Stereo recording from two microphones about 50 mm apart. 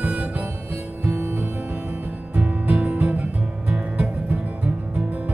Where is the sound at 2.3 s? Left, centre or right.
Right.